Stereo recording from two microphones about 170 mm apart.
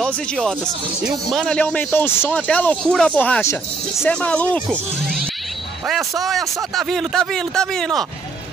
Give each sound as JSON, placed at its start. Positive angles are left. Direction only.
{"t": 0.0, "sound": "a man's voice", "side_deg": 5}
{"t": 5.9, "sound": "a man's voice", "side_deg": 0}